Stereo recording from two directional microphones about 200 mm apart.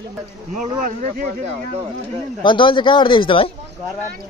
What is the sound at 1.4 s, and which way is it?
Speech, 30° right (ahead or behind).